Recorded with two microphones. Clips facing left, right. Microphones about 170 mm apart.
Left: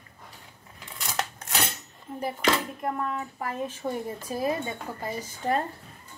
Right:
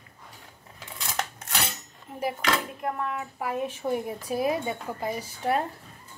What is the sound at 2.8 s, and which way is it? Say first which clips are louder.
A woman's voice: left 1 dB; 5° right (ahead or behind).